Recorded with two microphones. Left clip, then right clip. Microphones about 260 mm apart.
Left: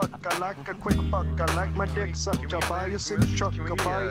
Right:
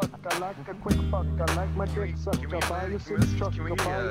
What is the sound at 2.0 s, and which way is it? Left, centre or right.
Speech, left.